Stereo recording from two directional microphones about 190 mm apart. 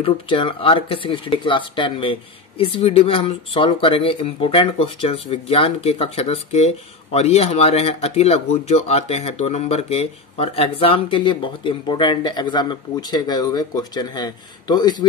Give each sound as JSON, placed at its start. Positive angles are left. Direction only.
{"t": 0.0, "sound": "speech", "side_deg": 25}